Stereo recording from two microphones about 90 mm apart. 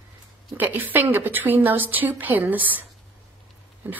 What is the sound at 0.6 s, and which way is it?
A woman's voice, 20° right (ahead or behind).